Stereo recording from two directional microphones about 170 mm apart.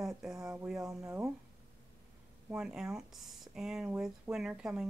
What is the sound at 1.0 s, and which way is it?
Speech, 15° right (ahead or behind).